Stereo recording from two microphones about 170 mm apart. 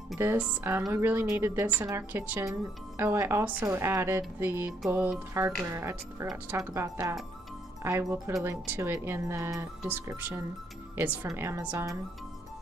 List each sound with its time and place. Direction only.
0.2 s speech: 15° right (ahead or behind)